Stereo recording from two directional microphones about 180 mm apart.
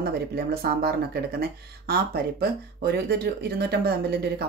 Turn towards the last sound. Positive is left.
turn(degrees=-60)  # may be behind; listen again after turning